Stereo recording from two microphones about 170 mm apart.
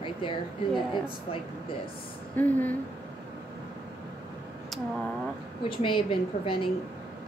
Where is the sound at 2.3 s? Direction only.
10° left (ahead or behind).